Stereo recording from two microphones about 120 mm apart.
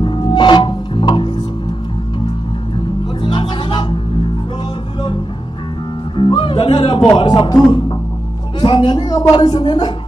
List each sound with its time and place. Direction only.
0.0 s music: 40° left (ahead or behind)
3.2 s music: 40° left (ahead or behind)
6.1 s music: 45° left (ahead or behind)
7.2 s speech: 40° left (ahead or behind)
8.5 s a woman's voice: 40° left (ahead or behind)